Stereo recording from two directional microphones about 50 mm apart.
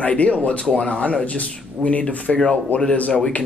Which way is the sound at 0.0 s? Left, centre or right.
Left.